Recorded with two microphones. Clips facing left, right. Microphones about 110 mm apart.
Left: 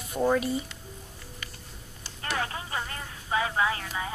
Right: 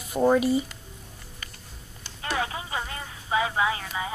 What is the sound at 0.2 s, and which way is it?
Speech, 10° right (ahead or behind).